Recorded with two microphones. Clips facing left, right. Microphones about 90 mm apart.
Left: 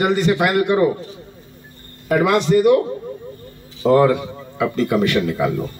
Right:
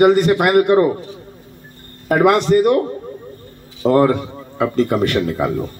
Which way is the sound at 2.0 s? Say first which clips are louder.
Right 3 dB; 50° right (ahead or behind).